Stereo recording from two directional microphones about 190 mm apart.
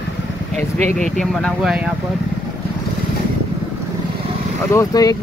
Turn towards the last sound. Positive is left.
turn(degrees=15)  # may be behind; listen again after turning